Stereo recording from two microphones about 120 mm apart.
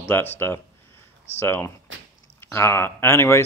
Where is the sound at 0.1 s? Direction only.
20° left (ahead or behind).